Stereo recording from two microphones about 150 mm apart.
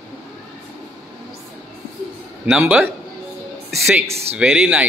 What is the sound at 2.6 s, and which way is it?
Speech, 10° right (ahead or behind).